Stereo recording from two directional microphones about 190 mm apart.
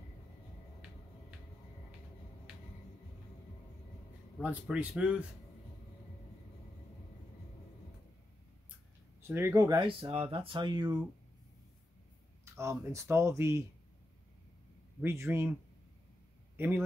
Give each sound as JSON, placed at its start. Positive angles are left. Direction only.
{"t": 4.4, "sound": "speech", "side_deg": -5}
{"t": 9.3, "sound": "speech", "side_deg": -15}
{"t": 12.5, "sound": "speech", "side_deg": -15}
{"t": 15.0, "sound": "speech", "side_deg": -10}
{"t": 16.5, "sound": "a man's voice", "side_deg": -10}